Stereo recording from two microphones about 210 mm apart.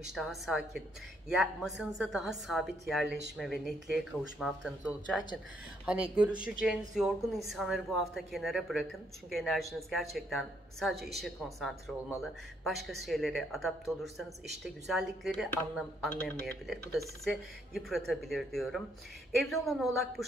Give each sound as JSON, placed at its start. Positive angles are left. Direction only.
{"t": 0.1, "sound": "speech", "side_deg": 0}
{"t": 3.1, "sound": "speech", "side_deg": -55}
{"t": 3.3, "sound": "speech", "side_deg": 0}
{"t": 17.2, "sound": "speech", "side_deg": 0}